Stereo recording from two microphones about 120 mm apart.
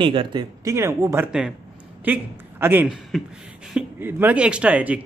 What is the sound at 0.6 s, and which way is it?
A man's voice, 25° right (ahead or behind).